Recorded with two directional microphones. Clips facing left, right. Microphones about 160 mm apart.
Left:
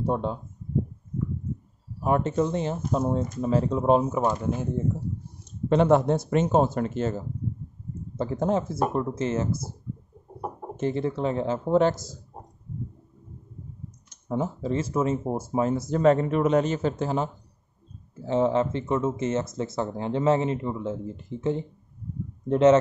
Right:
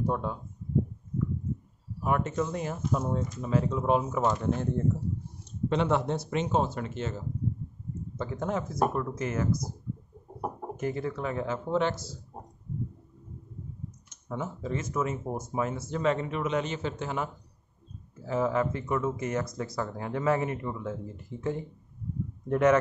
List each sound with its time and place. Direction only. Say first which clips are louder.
0.0 s speech: left 4 dB; 25° left (ahead or behind)
2.0 s speech: left 5 dB; 30° left (ahead or behind)
4.1 s speech: left 2 dB; 10° left (ahead or behind)
5.7 s speech: left 7 dB; 45° left (ahead or behind); by 9.8 s 25° left (ahead or behind)
10.8 s speech: left 6 dB; 30° left (ahead or behind)
14.3 s speech: left 6 dB; 30° left (ahead or behind)